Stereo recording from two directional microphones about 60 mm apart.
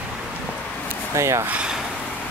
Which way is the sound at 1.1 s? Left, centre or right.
Right.